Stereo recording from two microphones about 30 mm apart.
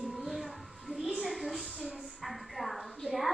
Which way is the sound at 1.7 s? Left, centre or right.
Right.